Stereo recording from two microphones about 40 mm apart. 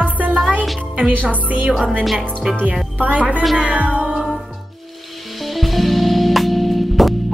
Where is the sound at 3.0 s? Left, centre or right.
Right.